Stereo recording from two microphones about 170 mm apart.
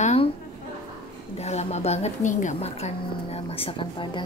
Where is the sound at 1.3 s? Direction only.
40° left (ahead or behind).